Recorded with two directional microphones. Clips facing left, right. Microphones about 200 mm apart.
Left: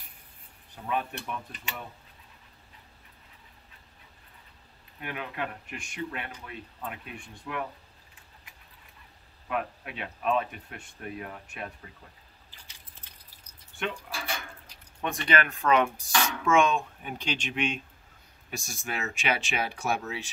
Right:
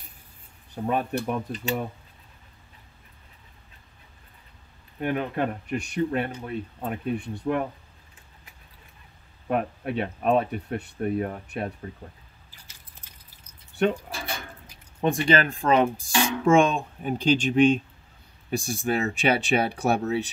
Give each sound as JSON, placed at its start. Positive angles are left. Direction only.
{"t": 0.7, "sound": "speech", "side_deg": -40}
{"t": 5.0, "sound": "speech", "side_deg": -40}
{"t": 9.5, "sound": "speech", "side_deg": -40}
{"t": 13.7, "sound": "speech", "side_deg": -40}
{"t": 15.2, "sound": "speech", "side_deg": -30}